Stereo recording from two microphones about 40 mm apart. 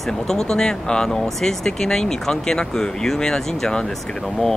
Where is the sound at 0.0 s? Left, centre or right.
Centre.